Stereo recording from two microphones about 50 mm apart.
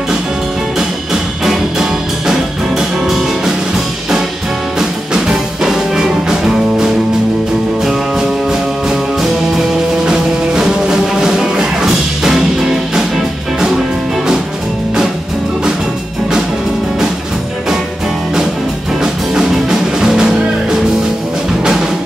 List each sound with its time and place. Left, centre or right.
1.4 s music: centre
4.7 s music: centre
18.9 s music: centre